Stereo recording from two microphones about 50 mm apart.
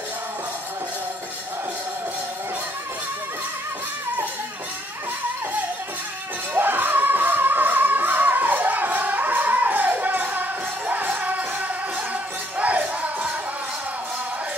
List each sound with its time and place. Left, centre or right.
6.5 s music: right
12.5 s music: right